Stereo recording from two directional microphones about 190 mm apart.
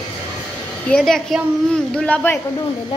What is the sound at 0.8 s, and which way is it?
A woman's voice, 5° left (ahead or behind).